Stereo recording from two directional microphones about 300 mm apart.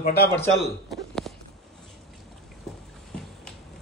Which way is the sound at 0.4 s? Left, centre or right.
Centre.